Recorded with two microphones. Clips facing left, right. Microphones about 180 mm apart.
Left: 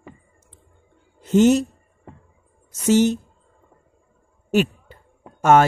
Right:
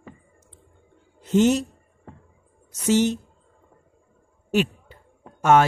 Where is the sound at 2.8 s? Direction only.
45° left (ahead or behind).